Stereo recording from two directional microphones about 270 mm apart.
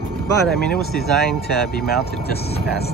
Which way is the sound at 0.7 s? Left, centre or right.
Left.